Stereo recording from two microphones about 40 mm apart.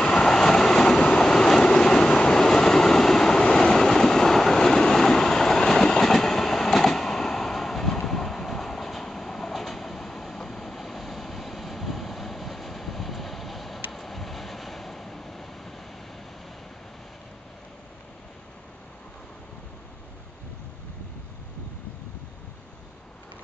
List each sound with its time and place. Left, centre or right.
0.0 s train: centre
13.9 s vehicle: centre